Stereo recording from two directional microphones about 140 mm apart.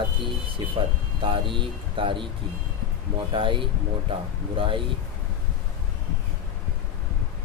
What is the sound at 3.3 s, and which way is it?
Speech, 35° right (ahead or behind).